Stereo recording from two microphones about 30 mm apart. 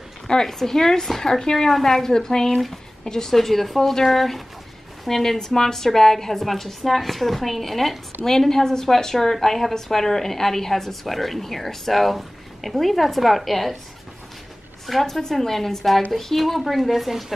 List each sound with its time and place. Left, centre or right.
0.3 s a woman's voice: centre
3.3 s a woman's voice: centre
8.3 s a woman's voice: centre
14.9 s a woman's voice: centre